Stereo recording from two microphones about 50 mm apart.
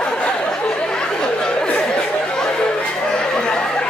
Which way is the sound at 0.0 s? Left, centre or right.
Centre.